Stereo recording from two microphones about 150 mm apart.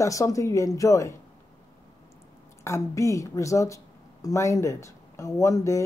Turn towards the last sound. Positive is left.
turn(degrees=20)  # may be behind; listen again after turning